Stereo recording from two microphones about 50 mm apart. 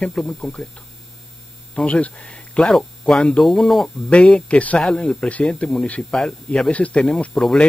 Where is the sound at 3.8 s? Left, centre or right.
Left.